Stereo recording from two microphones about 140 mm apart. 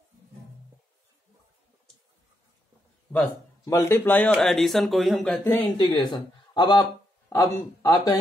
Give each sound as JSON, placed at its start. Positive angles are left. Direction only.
{"t": 3.6, "sound": "speech", "side_deg": 20}
{"t": 5.4, "sound": "speech", "side_deg": 20}
{"t": 5.8, "sound": "speech", "side_deg": 30}